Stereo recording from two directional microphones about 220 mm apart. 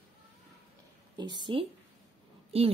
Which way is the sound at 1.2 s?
20° right (ahead or behind).